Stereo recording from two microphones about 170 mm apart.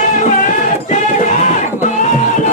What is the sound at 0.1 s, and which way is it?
Music, 45° left (ahead or behind).